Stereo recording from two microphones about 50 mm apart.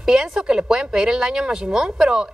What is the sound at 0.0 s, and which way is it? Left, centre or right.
A woman's voice, centre.